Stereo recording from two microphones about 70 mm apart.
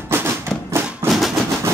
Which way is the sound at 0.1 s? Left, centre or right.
Right.